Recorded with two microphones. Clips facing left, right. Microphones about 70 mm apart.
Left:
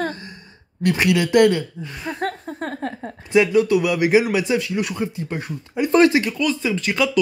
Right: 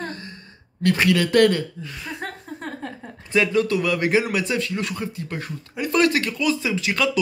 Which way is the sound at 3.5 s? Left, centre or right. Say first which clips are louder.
Left 4 dB; centre.